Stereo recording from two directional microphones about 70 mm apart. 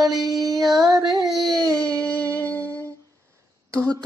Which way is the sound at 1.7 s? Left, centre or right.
Centre.